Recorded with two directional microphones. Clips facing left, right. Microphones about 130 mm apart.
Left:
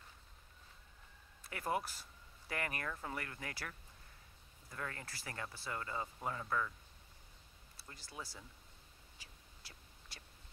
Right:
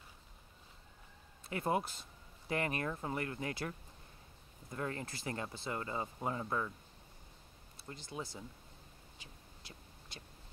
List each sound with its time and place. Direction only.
1.4 s speech: 25° right (ahead or behind)
7.7 s speech: 20° right (ahead or behind)
9.2 s a sound: 20° right (ahead or behind)